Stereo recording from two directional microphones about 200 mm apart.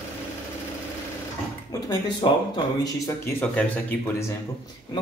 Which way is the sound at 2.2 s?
25° left (ahead or behind).